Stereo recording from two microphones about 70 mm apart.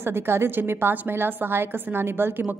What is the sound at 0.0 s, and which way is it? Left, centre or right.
A woman's voice, right.